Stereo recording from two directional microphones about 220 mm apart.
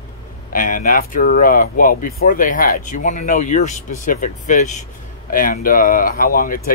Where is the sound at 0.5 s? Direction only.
40° left (ahead or behind).